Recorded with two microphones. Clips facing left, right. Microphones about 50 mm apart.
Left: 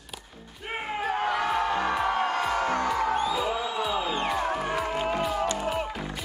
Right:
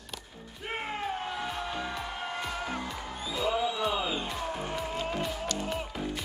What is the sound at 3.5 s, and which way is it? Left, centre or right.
Music, left.